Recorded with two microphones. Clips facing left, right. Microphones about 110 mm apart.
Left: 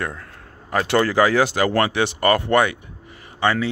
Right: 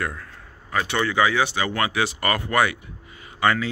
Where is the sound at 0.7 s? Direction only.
40° left (ahead or behind).